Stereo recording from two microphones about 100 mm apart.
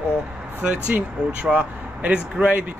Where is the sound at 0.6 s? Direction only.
15° right (ahead or behind).